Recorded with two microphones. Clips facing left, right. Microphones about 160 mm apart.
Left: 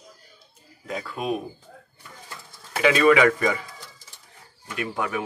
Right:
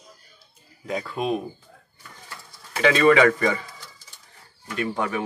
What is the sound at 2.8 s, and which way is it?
Speech, 10° left (ahead or behind).